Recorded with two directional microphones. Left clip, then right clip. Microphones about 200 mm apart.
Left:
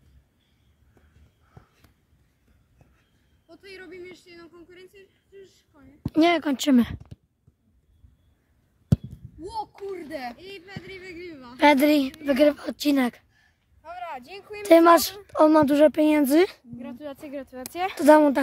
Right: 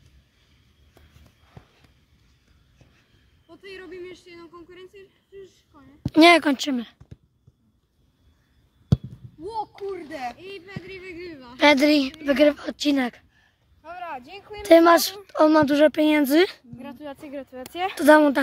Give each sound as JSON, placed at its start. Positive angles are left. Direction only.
{"t": 3.8, "sound": "speech", "side_deg": 50}
{"t": 6.1, "sound": "speech", "side_deg": -5}
{"t": 6.7, "sound": "a woman's voice", "side_deg": 35}
{"t": 9.4, "sound": "a sound", "side_deg": 50}
{"t": 11.1, "sound": "a woman's voice", "side_deg": 30}
{"t": 11.4, "sound": "a woman's voice", "side_deg": 10}
{"t": 13.8, "sound": "a sound", "side_deg": 20}
{"t": 14.6, "sound": "speech", "side_deg": 0}
{"t": 16.7, "sound": "a woman's voice", "side_deg": -15}